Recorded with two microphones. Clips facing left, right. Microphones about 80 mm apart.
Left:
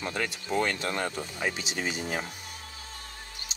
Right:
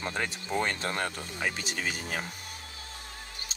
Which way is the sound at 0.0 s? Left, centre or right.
Right.